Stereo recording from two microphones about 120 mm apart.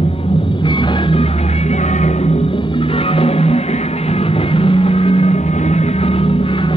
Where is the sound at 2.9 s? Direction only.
55° left (ahead or behind).